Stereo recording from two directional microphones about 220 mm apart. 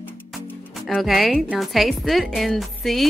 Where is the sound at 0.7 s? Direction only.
Centre (ahead or behind).